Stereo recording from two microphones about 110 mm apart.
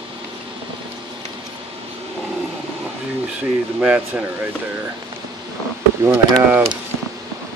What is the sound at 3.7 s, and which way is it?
Speech, 15° right (ahead or behind).